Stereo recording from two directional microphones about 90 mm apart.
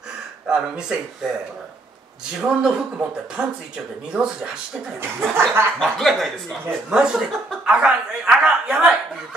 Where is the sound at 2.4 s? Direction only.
10° right (ahead or behind).